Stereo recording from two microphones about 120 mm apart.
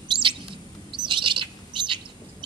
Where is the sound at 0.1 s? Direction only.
45° right (ahead or behind).